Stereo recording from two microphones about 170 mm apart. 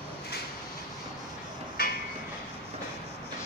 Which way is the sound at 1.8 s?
60° left (ahead or behind).